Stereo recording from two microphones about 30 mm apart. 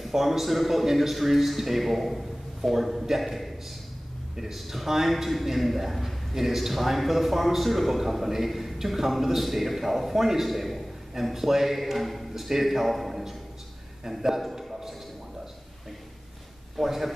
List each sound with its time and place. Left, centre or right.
0.0 s a man's voice: centre
14.5 s a sound: centre
16.7 s a man's voice: centre